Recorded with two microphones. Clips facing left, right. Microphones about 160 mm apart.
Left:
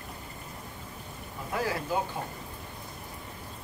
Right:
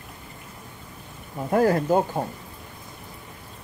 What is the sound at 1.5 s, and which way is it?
Speech, 50° right (ahead or behind).